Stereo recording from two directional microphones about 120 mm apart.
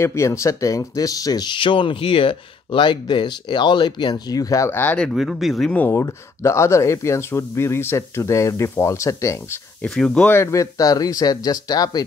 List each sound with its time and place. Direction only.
0.0 s speech: 25° left (ahead or behind); by 5.7 s centre (ahead or behind)
5.7 s speech: 15° left (ahead or behind)
9.8 s speech: 5° left (ahead or behind)
10.4 s speech: 25° left (ahead or behind)